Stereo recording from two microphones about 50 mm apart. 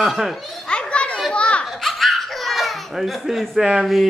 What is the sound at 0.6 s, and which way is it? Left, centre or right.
Children playing, left.